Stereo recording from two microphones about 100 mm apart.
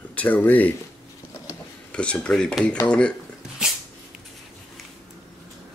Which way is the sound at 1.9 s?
10° left (ahead or behind).